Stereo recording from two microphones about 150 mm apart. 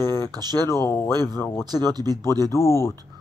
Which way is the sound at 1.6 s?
25° right (ahead or behind).